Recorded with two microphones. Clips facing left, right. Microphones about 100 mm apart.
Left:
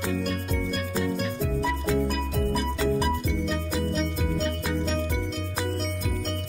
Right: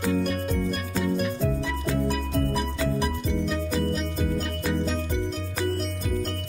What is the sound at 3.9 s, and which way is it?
Music, centre (ahead or behind).